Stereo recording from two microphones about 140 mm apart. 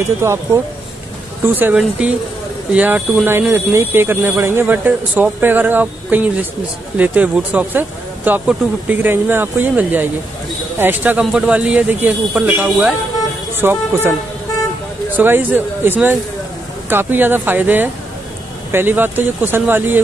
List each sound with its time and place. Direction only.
0.2 s speech: 20° right (ahead or behind)
1.4 s speech: 15° right (ahead or behind)
15.1 s speech: 15° right (ahead or behind)